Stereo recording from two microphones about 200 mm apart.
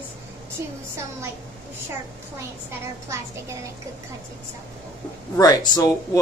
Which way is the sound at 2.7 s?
15° right (ahead or behind).